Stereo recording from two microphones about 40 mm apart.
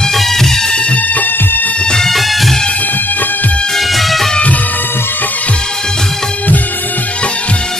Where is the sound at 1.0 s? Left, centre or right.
Left.